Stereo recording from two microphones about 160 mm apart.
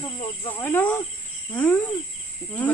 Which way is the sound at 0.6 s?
15° left (ahead or behind).